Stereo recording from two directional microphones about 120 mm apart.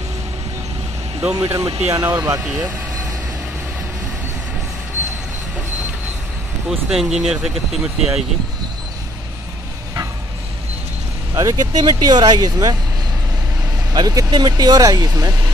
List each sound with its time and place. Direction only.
1.3 s speech: 25° right (ahead or behind)
2.4 s speech: 10° right (ahead or behind)
6.7 s speech: 5° right (ahead or behind)
11.3 s speech: 35° right (ahead or behind)
13.9 s speech: 35° right (ahead or behind)